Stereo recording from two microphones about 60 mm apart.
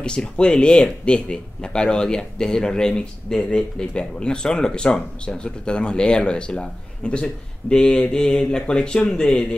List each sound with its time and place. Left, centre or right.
0.0 s speech: centre